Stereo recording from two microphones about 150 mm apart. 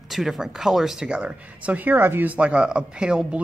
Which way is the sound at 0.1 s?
5° right (ahead or behind).